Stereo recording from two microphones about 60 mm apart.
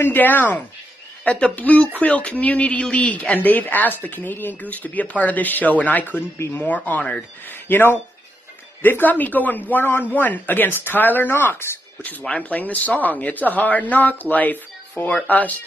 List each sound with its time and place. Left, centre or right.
0.0 s speech: left
7.4 s speech: left
12.0 s speech: left